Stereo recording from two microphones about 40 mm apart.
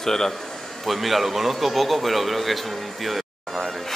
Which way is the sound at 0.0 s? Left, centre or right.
Centre.